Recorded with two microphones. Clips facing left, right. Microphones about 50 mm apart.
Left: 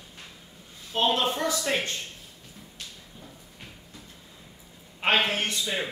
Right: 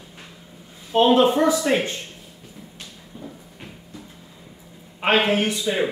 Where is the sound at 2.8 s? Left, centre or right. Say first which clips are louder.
Right 5 dB; centre.